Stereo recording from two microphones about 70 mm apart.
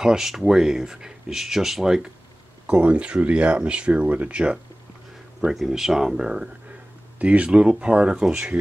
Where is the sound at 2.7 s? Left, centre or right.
Centre.